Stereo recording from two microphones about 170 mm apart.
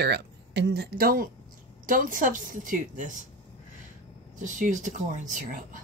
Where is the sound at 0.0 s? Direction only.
75° right (ahead or behind); by 3.2 s 50° right (ahead or behind).